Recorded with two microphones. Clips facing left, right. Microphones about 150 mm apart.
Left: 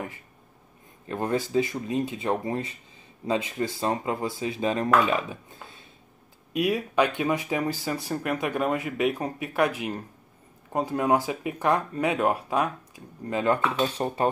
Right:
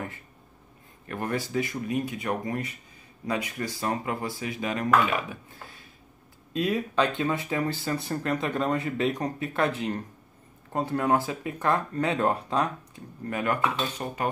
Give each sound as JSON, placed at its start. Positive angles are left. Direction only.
{"t": 1.0, "sound": "speech", "side_deg": 20}
{"t": 13.3, "sound": "speech", "side_deg": 25}